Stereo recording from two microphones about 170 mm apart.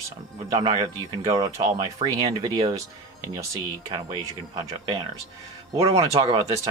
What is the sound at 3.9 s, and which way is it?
Speech, 30° right (ahead or behind).